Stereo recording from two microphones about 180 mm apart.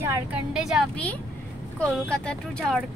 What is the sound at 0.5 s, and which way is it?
A woman's voice, centre (ahead or behind).